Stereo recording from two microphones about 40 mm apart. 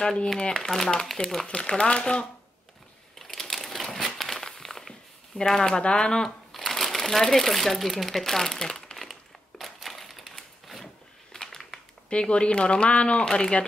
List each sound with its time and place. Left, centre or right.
0.0 s speech: centre
0.7 s speech: centre
1.5 s speech: left
3.2 s typewriter: centre
4.2 s walk: centre
5.5 s speech: centre
6.2 s speech: centre
8.5 s crumpling: centre
9.0 s a sound: centre
12.1 s speech: left